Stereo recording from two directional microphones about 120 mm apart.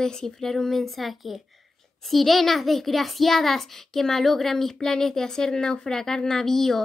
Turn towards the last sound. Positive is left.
turn(degrees=5)  # may be behind; listen again after turning